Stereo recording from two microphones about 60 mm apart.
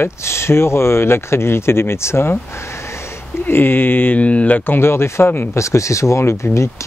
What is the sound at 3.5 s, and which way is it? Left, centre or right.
Speech, left.